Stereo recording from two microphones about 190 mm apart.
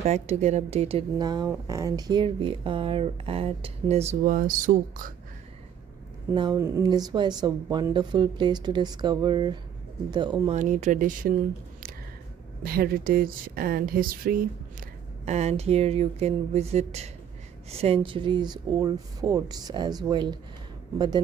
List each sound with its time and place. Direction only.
0.0 s a woman's voice: 35° right (ahead or behind)
6.3 s speech: 20° right (ahead or behind)
10.5 s a woman's voice: 40° right (ahead or behind)
12.6 s speech: 50° right (ahead or behind)
14.8 s speech: 35° right (ahead or behind)